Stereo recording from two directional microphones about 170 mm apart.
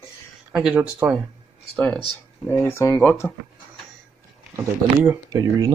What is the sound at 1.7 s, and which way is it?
Speech, 5° left (ahead or behind).